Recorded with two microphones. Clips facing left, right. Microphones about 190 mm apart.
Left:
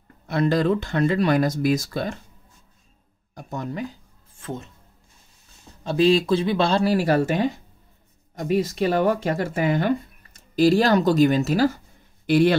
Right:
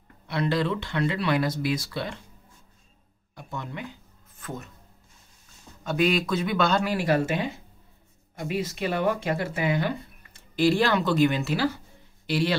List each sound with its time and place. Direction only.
0.3 s speech: 45° left (ahead or behind)
3.3 s a sound: 40° left (ahead or behind)
5.9 s speech: 30° left (ahead or behind); by 12.5 s 50° left (ahead or behind)